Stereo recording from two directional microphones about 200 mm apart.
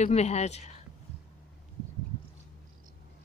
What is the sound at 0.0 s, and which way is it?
Speech, 35° left (ahead or behind).